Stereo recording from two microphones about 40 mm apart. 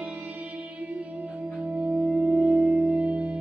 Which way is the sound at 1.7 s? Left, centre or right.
Right.